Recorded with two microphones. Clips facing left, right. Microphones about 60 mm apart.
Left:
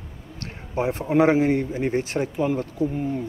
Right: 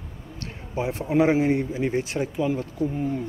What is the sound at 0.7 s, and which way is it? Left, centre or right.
Speech, left.